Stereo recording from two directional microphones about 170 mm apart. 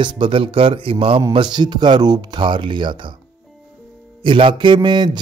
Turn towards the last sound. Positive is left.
turn(degrees=-25)  # may be behind; listen again after turning